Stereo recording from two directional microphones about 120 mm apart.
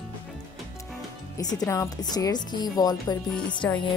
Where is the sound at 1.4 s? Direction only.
30° left (ahead or behind).